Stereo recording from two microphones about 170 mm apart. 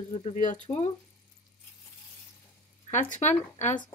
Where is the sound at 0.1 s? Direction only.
40° left (ahead or behind).